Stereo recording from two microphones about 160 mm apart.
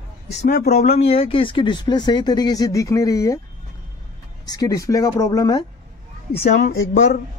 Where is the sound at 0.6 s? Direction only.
75° left (ahead or behind).